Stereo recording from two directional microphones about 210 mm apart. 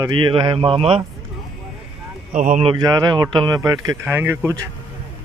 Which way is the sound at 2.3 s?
35° right (ahead or behind).